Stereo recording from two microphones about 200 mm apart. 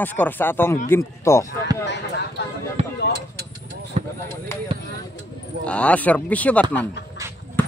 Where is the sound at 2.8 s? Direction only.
30° right (ahead or behind).